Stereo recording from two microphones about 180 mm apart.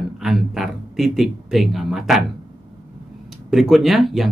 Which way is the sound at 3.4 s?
Centre (ahead or behind).